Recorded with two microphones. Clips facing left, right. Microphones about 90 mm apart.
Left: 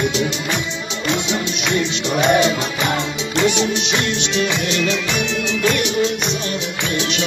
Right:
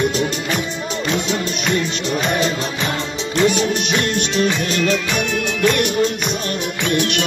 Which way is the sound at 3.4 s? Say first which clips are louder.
Right 1 dB; 45° right (ahead or behind).